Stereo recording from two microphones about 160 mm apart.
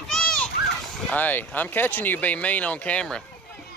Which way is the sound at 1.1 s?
10° left (ahead or behind).